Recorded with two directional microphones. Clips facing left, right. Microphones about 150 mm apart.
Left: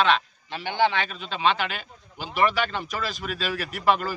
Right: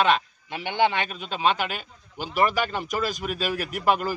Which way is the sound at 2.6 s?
10° right (ahead or behind).